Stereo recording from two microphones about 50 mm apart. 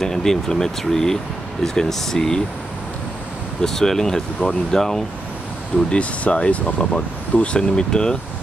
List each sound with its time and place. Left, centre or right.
0.0 s speech: centre
3.6 s speech: centre
5.9 s speech: left